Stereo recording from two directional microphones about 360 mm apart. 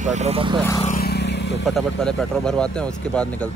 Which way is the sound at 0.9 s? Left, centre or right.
Left.